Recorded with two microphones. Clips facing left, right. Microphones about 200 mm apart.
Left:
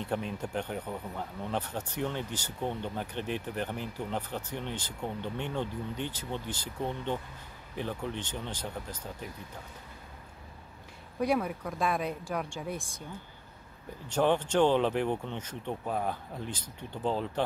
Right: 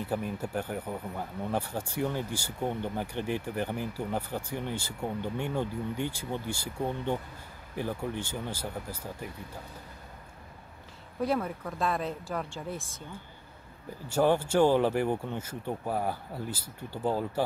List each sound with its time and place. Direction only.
0.0 s speech: 5° right (ahead or behind)
11.3 s speech: centre (ahead or behind)
14.0 s speech: 10° right (ahead or behind)